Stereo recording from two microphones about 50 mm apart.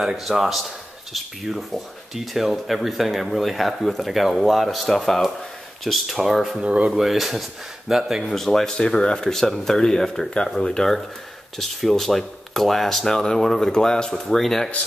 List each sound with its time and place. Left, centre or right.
0.0 s speech: centre
6.6 s speech: right
6.9 s speech: centre